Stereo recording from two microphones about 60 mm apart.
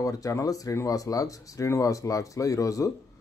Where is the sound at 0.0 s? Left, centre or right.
Left.